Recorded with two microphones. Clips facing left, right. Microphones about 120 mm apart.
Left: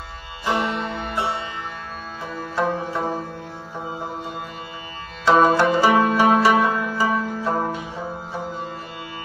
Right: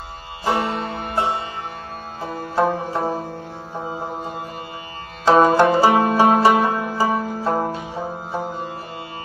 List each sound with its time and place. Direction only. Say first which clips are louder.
0.5 s music: right 1 dB; 40° right (ahead or behind)
5.2 s banjo: right 2 dB; 40° right (ahead or behind)
5.9 s music: right 1 dB; 40° right (ahead or behind)